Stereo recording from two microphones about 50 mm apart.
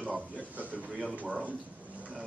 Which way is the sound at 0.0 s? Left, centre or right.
Right.